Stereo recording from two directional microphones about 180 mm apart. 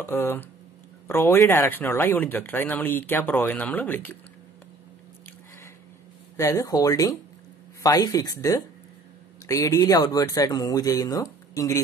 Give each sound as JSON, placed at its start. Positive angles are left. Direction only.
{"t": 0.0, "sound": "speech", "side_deg": 10}
{"t": 6.3, "sound": "speech", "side_deg": 15}